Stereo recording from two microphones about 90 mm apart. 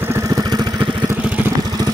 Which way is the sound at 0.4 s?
50° right (ahead or behind).